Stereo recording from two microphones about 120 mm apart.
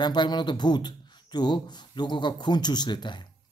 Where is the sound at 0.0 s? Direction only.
40° left (ahead or behind).